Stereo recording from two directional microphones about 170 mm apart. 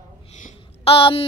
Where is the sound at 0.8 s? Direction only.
35° left (ahead or behind).